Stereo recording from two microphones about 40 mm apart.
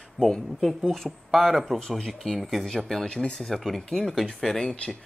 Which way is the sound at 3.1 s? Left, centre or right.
Left.